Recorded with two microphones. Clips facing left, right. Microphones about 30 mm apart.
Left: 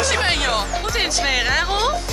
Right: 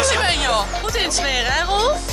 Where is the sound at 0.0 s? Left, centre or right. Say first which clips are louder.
Right 1 dB; centre.